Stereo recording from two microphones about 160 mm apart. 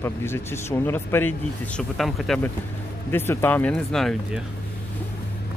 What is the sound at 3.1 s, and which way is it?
Speech, 15° left (ahead or behind).